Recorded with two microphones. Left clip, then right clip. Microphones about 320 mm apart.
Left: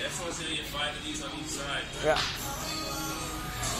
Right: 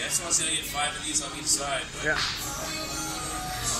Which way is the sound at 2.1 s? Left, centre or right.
Left.